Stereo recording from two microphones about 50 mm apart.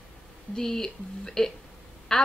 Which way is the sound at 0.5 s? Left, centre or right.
Centre.